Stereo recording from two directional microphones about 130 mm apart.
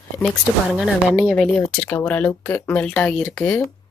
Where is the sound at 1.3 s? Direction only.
15° left (ahead or behind).